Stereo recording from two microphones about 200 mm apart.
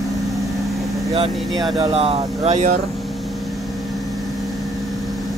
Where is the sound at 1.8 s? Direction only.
30° right (ahead or behind).